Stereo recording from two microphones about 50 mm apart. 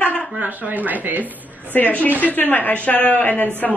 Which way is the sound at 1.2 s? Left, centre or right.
Left.